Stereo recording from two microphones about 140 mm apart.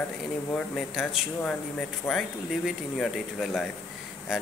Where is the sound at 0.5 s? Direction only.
Centre (ahead or behind).